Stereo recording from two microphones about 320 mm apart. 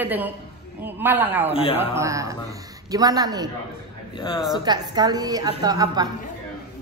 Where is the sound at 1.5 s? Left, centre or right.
Centre.